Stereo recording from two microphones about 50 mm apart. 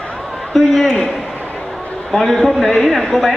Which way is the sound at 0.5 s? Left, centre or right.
Centre.